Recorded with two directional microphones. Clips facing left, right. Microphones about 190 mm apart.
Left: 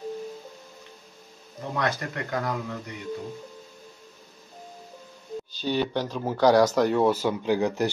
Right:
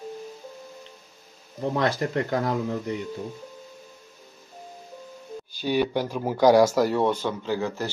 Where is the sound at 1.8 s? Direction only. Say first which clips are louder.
Right 3 dB; 30° right (ahead or behind).